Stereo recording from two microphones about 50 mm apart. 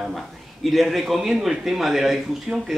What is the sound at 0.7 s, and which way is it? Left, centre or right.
A man's voice, centre.